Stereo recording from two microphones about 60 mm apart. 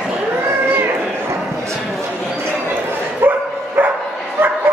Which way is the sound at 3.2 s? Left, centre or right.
Right.